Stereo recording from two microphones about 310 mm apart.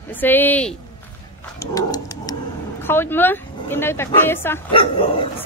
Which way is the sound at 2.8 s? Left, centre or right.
Centre.